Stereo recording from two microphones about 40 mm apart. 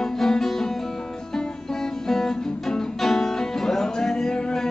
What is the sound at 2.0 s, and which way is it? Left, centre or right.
Music, centre.